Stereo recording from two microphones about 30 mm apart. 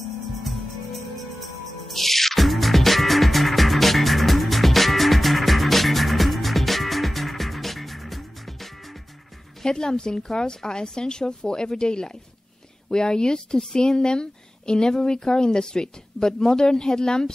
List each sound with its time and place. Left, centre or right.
1.1 s music: centre
9.7 s a woman's voice: left